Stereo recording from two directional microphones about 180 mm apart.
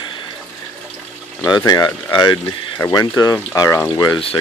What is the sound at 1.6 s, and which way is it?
Speech, 25° left (ahead or behind).